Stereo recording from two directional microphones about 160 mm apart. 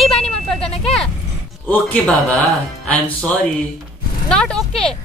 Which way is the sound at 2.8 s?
10° left (ahead or behind).